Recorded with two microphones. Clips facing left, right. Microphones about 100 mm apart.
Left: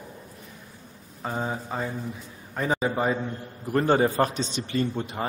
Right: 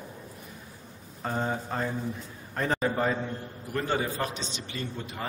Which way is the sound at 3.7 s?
45° left (ahead or behind).